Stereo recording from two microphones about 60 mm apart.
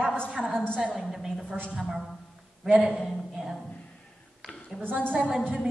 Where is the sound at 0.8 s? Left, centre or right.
Centre.